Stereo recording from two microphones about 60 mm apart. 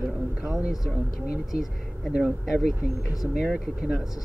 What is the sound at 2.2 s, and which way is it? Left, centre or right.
Speech, centre.